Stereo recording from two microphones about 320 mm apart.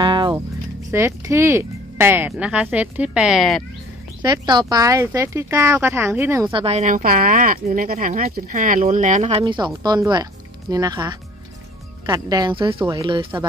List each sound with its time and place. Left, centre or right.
0.0 s music: centre
0.9 s speech: centre
4.2 s speech: centre